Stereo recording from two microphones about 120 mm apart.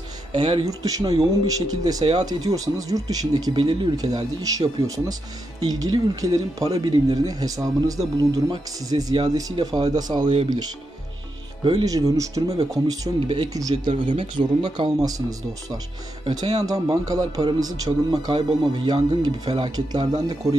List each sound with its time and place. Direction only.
0.3 s speech: 45° right (ahead or behind)
0.7 s speech: 30° right (ahead or behind)
3.5 s speech: 45° right (ahead or behind)
3.9 s speech: 30° right (ahead or behind)
9.1 s speech: 45° right (ahead or behind)
9.4 s speech: 35° right (ahead or behind)
11.8 s speech: 30° right (ahead or behind)
14.1 s speech: 45° right (ahead or behind)
15.0 s speech: 30° right (ahead or behind)
18.5 s speech: 45° right (ahead or behind)